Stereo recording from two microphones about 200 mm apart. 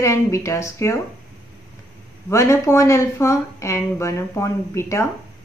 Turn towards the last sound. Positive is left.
turn(degrees=15)  # may be behind; listen again after turning